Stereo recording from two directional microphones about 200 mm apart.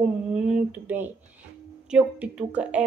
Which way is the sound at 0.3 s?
5° right (ahead or behind).